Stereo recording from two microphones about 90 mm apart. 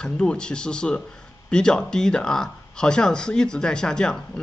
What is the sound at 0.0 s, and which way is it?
Speech, 10° left (ahead or behind).